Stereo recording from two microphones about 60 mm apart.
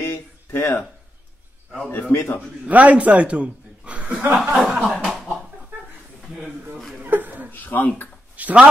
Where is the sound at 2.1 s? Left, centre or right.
Left.